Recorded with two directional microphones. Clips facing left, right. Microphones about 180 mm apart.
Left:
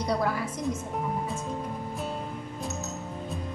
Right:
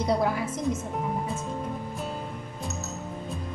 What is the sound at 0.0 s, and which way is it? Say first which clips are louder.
Speech: right 3 dB; 25° right (ahead or behind).